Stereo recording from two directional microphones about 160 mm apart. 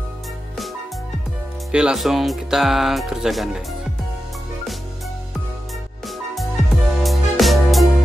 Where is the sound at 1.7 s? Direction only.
5° right (ahead or behind).